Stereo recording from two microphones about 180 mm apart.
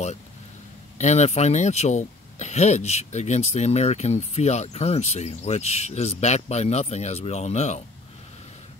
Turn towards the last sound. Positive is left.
turn(degrees=40)  # may be behind; listen again after turning